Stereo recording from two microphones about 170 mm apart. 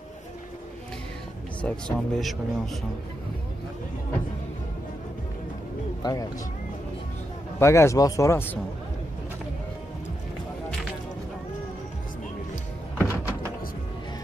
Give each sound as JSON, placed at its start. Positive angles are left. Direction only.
{"t": 1.6, "sound": "speech", "side_deg": 5}
{"t": 6.0, "sound": "speech", "side_deg": 25}
{"t": 7.5, "sound": "speech", "side_deg": 15}
{"t": 13.0, "sound": "door", "side_deg": 15}